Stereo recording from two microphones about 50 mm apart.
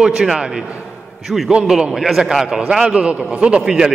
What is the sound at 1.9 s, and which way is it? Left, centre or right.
A man's voice, centre.